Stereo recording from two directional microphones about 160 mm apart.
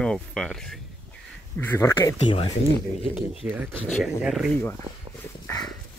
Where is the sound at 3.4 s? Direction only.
10° right (ahead or behind).